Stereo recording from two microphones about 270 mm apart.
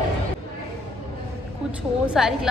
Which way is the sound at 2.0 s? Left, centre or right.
Centre.